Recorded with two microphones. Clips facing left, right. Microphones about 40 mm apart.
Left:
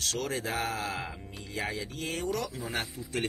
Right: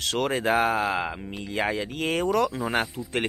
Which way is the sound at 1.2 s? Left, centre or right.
Right.